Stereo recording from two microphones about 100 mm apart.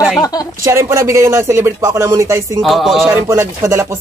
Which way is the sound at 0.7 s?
25° right (ahead or behind).